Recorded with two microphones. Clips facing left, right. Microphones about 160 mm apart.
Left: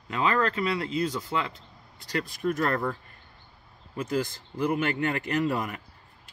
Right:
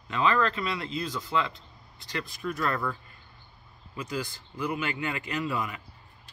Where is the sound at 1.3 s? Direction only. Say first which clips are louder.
Right 5 dB; 20° left (ahead or behind).